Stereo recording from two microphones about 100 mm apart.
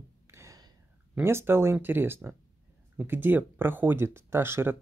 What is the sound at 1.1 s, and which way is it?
Speech, 25° right (ahead or behind).